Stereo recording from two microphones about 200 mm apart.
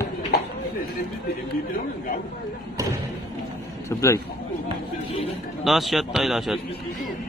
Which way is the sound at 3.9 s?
15° left (ahead or behind).